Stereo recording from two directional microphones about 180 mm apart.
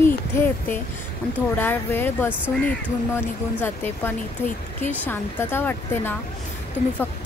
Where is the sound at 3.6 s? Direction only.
10° left (ahead or behind).